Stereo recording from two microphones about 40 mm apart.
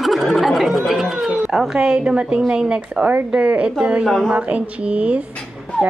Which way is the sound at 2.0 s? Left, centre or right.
Right.